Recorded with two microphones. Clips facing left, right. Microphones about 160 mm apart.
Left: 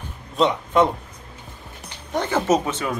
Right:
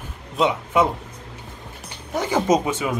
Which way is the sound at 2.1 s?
10° right (ahead or behind).